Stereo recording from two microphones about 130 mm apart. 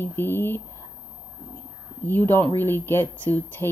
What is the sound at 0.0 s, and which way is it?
Speech, 15° left (ahead or behind).